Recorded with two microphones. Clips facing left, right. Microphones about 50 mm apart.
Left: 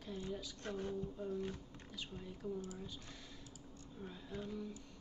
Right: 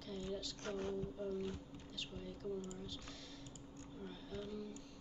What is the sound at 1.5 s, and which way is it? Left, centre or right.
Speech, centre.